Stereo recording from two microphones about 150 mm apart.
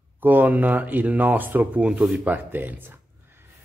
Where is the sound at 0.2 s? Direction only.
10° right (ahead or behind).